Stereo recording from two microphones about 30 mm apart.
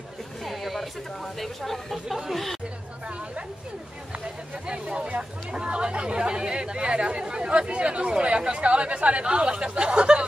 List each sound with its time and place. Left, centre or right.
0.5 s speech: centre
4.6 s speech: right